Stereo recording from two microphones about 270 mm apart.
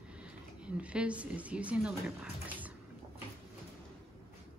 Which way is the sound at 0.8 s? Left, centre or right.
Centre.